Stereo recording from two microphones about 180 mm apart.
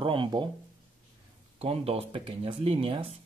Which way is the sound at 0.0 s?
30° right (ahead or behind).